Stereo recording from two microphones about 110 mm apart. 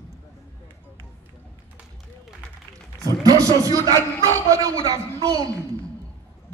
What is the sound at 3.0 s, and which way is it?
Speech, 30° right (ahead or behind).